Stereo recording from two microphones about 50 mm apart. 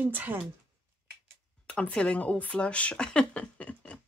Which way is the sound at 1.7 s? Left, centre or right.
Centre.